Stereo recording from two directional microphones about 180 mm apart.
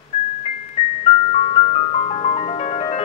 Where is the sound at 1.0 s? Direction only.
35° left (ahead or behind).